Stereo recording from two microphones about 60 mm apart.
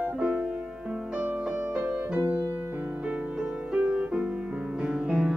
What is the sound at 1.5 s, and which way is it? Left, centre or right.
Music, centre.